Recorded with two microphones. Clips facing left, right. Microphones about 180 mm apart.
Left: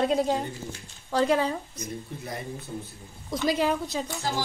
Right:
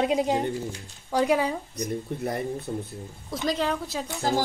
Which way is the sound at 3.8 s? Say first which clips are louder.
Left 1 dB; 5° right (ahead or behind).